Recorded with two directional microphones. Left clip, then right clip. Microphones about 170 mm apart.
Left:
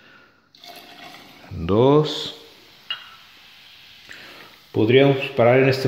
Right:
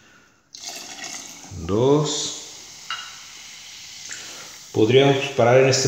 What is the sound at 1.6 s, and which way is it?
Speech, 50° left (ahead or behind).